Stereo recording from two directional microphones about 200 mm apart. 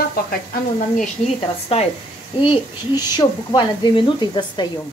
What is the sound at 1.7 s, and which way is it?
Speech, 30° left (ahead or behind).